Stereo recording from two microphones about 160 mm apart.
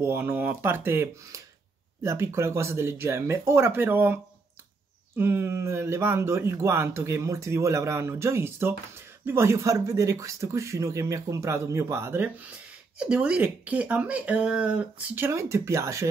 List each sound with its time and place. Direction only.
0.0 s speech: 10° right (ahead or behind)